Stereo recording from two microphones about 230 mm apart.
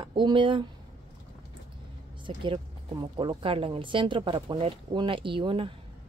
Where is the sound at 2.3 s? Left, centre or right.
Right.